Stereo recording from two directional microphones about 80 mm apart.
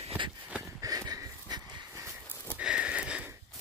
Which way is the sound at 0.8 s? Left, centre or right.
Right.